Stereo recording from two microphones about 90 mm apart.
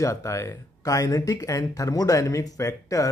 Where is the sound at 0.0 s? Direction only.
35° left (ahead or behind).